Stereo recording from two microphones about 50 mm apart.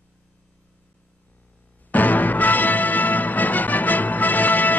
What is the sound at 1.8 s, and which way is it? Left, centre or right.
Music, left.